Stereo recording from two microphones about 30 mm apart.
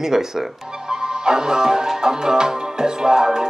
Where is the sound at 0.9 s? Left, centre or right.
Right.